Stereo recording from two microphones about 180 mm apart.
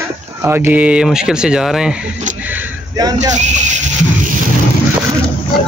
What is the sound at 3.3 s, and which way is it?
Speech, 40° right (ahead or behind).